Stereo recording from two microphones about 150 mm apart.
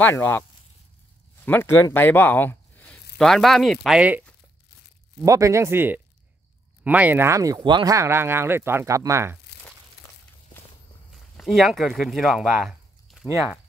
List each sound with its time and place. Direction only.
0.0 s speech: 15° left (ahead or behind); by 4.2 s 5° right (ahead or behind)
5.2 s speech: 20° right (ahead or behind)
11.1 s speech: centre (ahead or behind)